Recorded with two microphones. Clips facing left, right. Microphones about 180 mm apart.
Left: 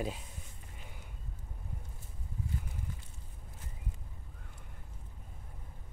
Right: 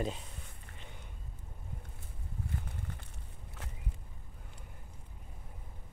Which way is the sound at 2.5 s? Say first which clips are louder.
Even; 60° right (ahead or behind).